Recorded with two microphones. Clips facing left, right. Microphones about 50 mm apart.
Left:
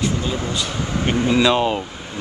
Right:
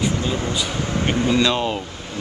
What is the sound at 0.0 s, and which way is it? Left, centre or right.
Air conditioning, centre.